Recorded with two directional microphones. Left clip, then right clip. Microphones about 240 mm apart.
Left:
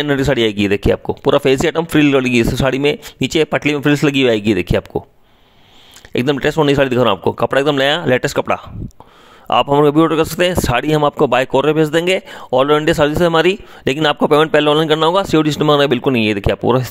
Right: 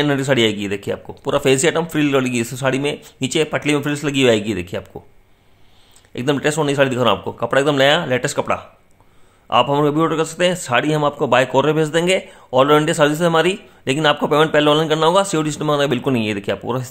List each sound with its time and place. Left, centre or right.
0.0 s a man's voice: left
6.1 s a man's voice: left